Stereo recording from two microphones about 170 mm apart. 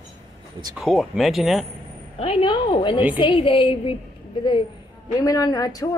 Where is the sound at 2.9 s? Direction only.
10° right (ahead or behind).